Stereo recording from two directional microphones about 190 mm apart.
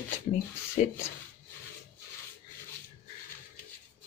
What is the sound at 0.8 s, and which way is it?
Speech, 35° left (ahead or behind).